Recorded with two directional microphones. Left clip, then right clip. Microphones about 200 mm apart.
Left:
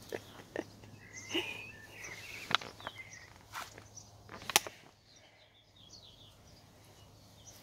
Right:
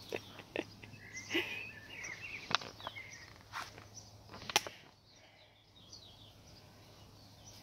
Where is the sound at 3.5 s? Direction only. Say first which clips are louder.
Even; 10° left (ahead or behind).